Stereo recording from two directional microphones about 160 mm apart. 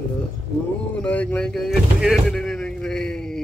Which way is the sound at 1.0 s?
10° left (ahead or behind).